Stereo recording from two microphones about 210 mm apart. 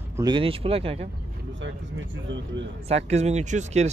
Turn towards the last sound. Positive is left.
turn(degrees=-35)  # may be behind; listen again after turning